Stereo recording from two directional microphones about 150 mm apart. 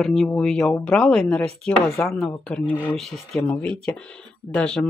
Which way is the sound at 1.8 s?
20° left (ahead or behind).